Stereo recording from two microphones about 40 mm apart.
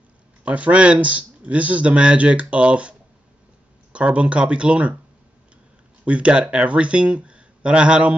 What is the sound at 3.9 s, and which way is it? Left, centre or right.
Speech, right.